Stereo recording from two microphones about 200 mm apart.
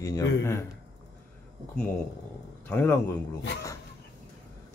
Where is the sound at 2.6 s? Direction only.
10° left (ahead or behind).